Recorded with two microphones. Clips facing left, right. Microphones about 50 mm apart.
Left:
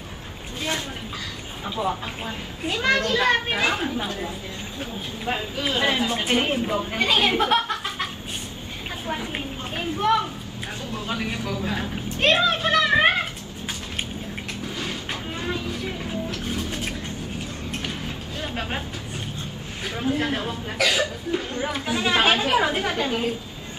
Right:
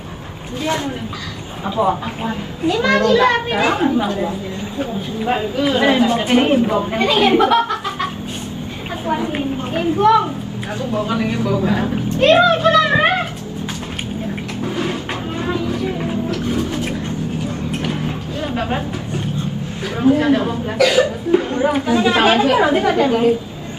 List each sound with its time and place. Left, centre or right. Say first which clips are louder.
1.9 s a woman's voice: right 8 dB; right
5.2 s a woman's voice: right 9 dB; centre
5.7 s a woman's voice: right 8 dB; right
11.4 s a woman's voice: right 10 dB; right
15.5 s vehicle: right 8 dB; right
20.0 s a woman's voice: right 11 dB; right